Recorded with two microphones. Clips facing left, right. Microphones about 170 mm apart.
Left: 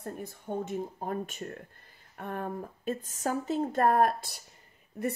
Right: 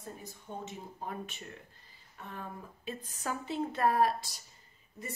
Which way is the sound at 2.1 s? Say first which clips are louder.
Left 9 dB; 55° left (ahead or behind).